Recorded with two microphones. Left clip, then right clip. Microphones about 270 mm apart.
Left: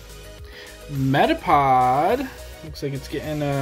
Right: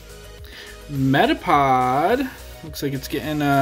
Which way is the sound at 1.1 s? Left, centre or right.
Centre.